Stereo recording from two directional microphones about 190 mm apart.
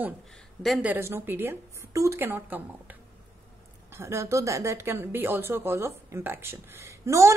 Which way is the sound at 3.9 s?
15° right (ahead or behind).